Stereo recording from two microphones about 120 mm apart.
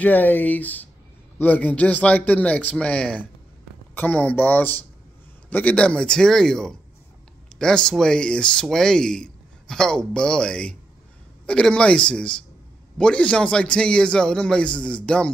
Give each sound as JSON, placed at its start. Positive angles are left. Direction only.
{"t": 0.0, "sound": "a man's voice", "side_deg": 15}